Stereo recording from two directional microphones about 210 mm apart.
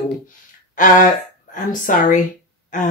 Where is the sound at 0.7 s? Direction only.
40° left (ahead or behind).